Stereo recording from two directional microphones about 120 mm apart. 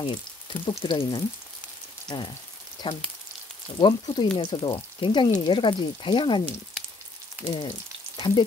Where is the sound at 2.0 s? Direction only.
40° left (ahead or behind).